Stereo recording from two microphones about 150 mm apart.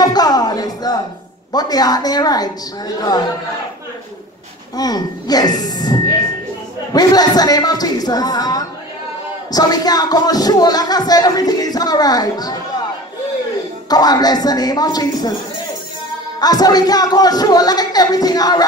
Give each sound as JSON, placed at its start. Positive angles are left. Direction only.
{"t": 0.0, "sound": "music", "side_deg": 25}
{"t": 1.5, "sound": "speech", "side_deg": 25}
{"t": 4.7, "sound": "speech", "side_deg": 25}
{"t": 13.8, "sound": "speech", "side_deg": 25}
{"t": 16.3, "sound": "speech", "side_deg": 25}